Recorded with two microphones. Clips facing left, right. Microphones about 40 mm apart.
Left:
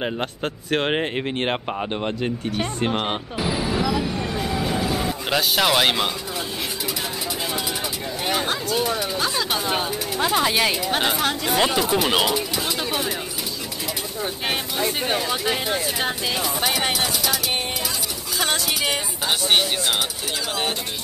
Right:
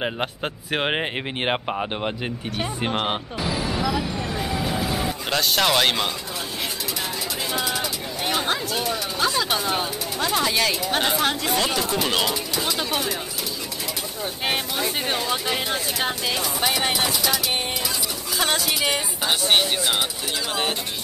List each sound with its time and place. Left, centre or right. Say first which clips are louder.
0.0 s speech: left 1 dB; centre
3.3 s vehicle: left 2 dB; centre
5.3 s speech: left 1 dB; centre
8.3 s chatter: left 1 dB; centre
9.7 s speech: left 1 dB; centre
10.9 s speech: even; centre
11.5 s speech: left 3 dB; centre
14.4 s speech: even; centre
18.4 s speech: even; centre